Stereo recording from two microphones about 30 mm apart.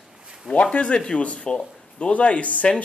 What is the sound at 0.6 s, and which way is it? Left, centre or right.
Speech, left.